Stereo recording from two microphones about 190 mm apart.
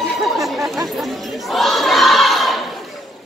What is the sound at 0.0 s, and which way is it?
Chatter, centre (ahead or behind).